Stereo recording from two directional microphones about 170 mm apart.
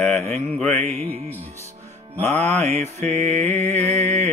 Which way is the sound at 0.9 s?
40° right (ahead or behind).